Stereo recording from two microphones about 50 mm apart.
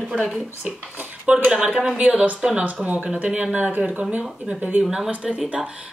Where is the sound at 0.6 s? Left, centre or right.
Right.